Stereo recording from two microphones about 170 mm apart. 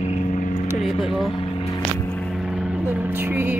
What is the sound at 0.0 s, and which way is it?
Vehicle, 45° left (ahead or behind).